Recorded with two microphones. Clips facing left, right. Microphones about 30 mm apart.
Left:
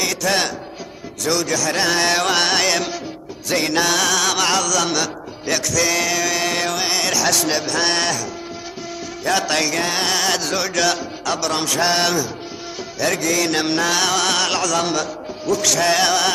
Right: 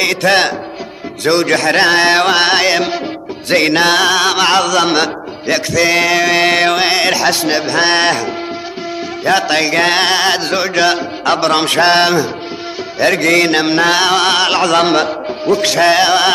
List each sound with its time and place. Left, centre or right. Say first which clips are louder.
0.0 s a man's voice: right 8 dB; right
1.2 s music: right 8 dB; right
3.4 s music: right 7 dB; right
9.8 s music: right 9 dB; right
10.1 s music: right 6 dB; right
13.6 s music: right 7 dB; right